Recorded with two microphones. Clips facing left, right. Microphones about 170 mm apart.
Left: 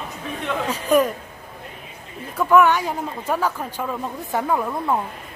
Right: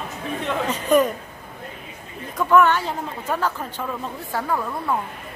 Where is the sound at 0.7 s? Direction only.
5° left (ahead or behind).